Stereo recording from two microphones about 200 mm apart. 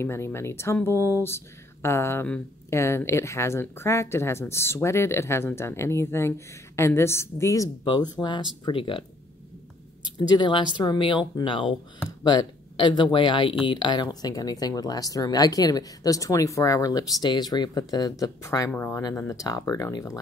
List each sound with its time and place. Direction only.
0.0 s speech: 15° left (ahead or behind)
0.9 s speech: 15° right (ahead or behind)
1.2 s speech: 15° left (ahead or behind)
10.1 s speech: 20° left (ahead or behind)